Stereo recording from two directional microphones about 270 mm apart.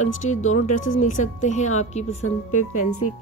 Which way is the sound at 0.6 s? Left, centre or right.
Left.